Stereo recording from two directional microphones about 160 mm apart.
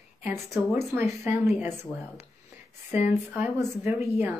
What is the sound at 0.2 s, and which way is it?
A woman's voice, 15° right (ahead or behind).